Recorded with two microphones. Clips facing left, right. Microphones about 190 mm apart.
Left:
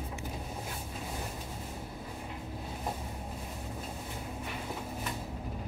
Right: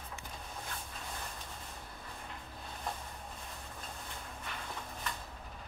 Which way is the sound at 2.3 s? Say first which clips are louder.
Left 7 dB; 10° left (ahead or behind).